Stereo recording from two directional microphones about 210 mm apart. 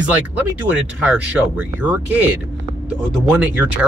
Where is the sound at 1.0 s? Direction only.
5° right (ahead or behind).